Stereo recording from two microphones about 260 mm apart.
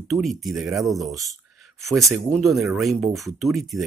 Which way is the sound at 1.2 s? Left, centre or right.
Centre.